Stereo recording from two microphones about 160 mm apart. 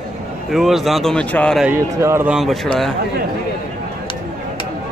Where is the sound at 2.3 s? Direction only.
Centre (ahead or behind).